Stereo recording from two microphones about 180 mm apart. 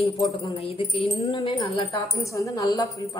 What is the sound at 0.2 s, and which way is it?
Speech, 20° left (ahead or behind).